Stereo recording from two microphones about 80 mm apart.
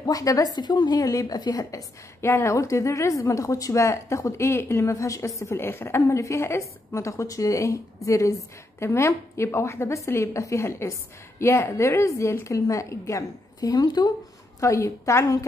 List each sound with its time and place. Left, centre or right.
0.0 s a woman's voice: left
13.6 s speech: left
14.6 s a woman's voice: left